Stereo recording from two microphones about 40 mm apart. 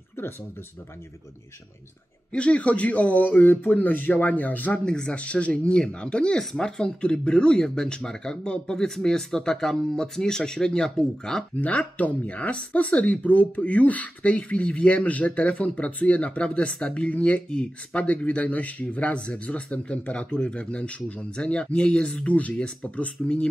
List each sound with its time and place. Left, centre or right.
2.3 s speech: left
4.8 s speech: left
5.2 s speech: left; by 11.4 s centre
11.5 s speech: left